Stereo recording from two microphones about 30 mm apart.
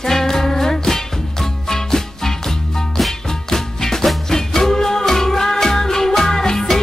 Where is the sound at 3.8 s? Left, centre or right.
Centre.